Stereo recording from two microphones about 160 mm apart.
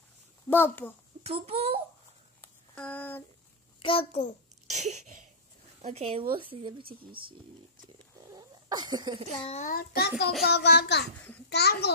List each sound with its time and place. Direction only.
0.5 s a child's voice: 15° left (ahead or behind)
1.2 s a child's voice: 40° right (ahead or behind)
2.4 s a sound: 10° left (ahead or behind)
3.8 s a child's voice: 35° left (ahead or behind)
4.6 s a sound: 45° right (ahead or behind)
5.9 s a child's voice: 40° right (ahead or behind)
7.0 s speech: 65° right (ahead or behind)
8.3 s a sound: 25° right (ahead or behind)
9.5 s a child's voice: 45° left (ahead or behind)
9.8 s a child's voice: 85° left